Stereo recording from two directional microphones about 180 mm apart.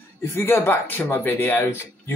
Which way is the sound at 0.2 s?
15° left (ahead or behind).